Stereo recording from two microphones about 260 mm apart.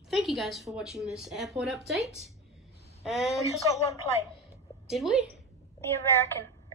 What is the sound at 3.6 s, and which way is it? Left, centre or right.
Speech, centre.